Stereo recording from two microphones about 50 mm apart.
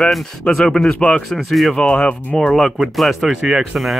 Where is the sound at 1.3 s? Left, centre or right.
Centre.